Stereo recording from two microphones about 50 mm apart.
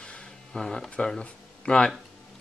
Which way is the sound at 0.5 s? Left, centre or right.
Centre.